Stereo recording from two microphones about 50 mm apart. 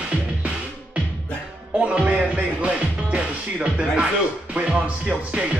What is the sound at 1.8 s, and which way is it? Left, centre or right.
Music, right.